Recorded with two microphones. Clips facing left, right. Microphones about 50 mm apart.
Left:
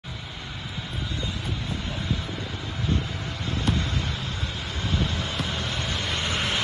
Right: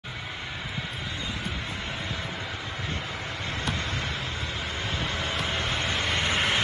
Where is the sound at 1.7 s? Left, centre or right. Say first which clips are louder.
Left 1 dB; right.